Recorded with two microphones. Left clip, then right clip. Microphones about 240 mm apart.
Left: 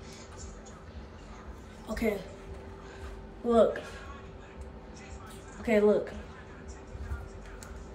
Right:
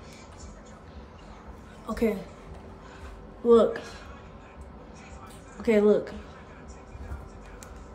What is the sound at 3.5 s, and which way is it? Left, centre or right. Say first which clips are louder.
Speech: right 5 dB; centre.